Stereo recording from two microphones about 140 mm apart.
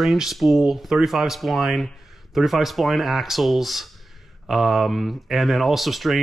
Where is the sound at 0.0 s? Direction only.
Centre (ahead or behind).